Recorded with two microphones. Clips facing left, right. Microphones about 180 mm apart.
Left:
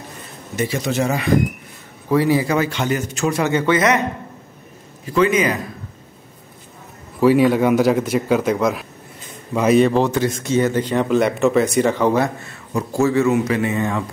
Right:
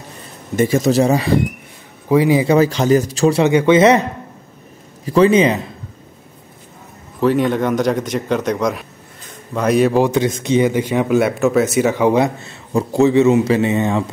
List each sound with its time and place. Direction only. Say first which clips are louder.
0.6 s speech: right 7 dB; 45° right (ahead or behind)
2.0 s a man's voice: right 3 dB; 15° right (ahead or behind)
2.5 s speech: right 7 dB; 40° right (ahead or behind)
3.4 s a man's voice: right 5 dB; 20° right (ahead or behind)
5.0 s speech: right 5 dB; 35° right (ahead or behind)
7.2 s a man's voice: left 2 dB; 5° left (ahead or behind); by 14.0 s 25° right (ahead or behind)